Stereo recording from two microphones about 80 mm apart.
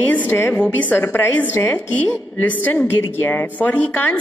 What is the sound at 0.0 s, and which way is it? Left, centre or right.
A woman's voice, left.